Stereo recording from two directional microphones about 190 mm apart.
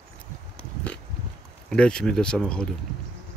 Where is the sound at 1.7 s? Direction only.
5° left (ahead or behind).